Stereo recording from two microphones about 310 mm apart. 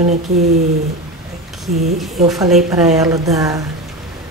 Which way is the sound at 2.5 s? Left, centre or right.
Centre.